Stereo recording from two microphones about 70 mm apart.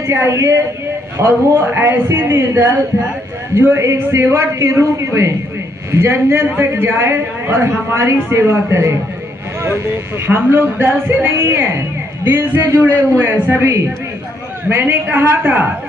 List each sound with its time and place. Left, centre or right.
0.0 s speech: right
1.1 s a man's voice: right
10.2 s a man's voice: right